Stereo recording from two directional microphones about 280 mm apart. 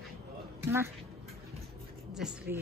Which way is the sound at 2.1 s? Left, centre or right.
Centre.